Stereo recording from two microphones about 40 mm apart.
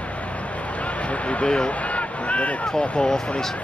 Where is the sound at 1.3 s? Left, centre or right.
Left.